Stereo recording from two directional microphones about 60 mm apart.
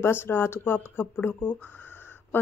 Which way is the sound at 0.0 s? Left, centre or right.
Left.